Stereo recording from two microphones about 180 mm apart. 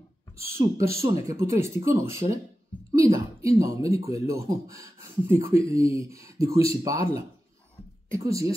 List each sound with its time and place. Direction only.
0.6 s speech: 15° right (ahead or behind)
2.9 s a sound: 20° right (ahead or behind)
3.4 s speech: 15° right (ahead or behind)